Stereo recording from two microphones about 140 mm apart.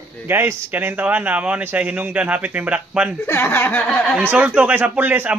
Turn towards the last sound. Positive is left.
turn(degrees=-10)  # may be behind; listen again after turning